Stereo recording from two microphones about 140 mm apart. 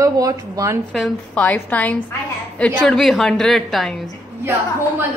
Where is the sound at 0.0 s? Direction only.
25° right (ahead or behind).